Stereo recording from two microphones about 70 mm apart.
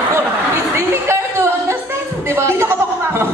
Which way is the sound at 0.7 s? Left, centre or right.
Right.